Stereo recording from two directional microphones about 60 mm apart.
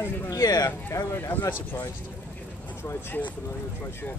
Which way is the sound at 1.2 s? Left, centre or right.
Left.